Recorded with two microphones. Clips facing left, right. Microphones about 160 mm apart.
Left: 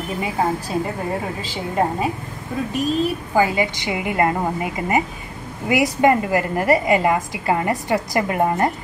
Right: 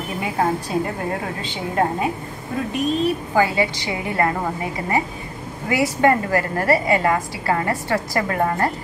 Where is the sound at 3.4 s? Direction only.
15° left (ahead or behind).